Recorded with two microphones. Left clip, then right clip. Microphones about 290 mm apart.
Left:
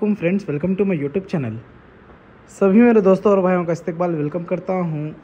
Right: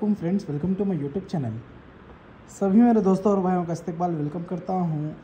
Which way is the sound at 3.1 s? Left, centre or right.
Right.